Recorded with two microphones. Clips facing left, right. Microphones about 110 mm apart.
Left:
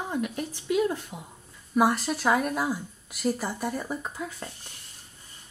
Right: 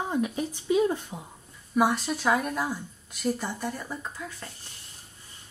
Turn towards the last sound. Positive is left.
turn(degrees=15)  # may be behind; listen again after turning